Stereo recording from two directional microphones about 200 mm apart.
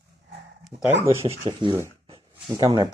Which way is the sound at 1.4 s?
20° right (ahead or behind).